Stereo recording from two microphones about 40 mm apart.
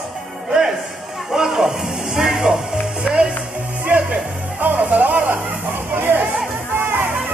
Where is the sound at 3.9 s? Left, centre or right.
Right.